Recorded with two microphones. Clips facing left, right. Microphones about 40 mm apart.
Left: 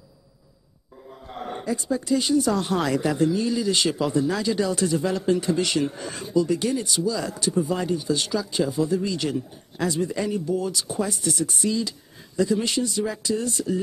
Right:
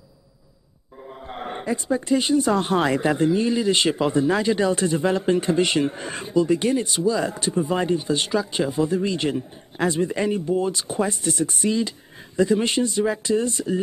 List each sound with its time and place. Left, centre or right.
1.0 s speech: right